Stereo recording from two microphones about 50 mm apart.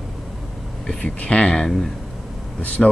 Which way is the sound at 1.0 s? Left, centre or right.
Left.